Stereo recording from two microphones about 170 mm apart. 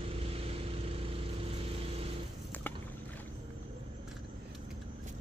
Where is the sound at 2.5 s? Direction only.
10° left (ahead or behind).